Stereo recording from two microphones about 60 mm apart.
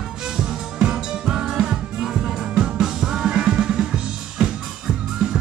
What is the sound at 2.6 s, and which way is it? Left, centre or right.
Drum, centre.